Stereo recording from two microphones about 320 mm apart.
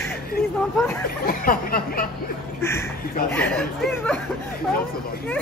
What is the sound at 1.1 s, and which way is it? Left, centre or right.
Speech, left.